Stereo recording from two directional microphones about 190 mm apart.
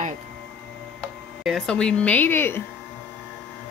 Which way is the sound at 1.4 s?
Centre (ahead or behind).